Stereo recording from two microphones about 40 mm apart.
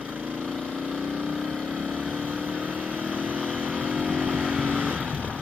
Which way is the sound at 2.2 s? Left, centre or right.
Right.